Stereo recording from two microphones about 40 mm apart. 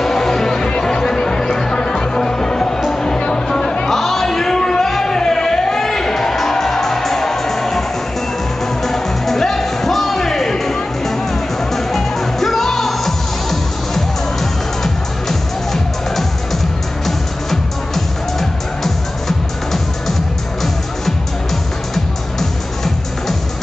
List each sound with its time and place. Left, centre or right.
0.0 s music: centre
3.9 s music: centre
8.8 s music: centre